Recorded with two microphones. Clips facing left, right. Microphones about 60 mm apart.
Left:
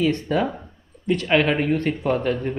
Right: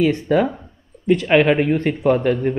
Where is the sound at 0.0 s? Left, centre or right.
Right.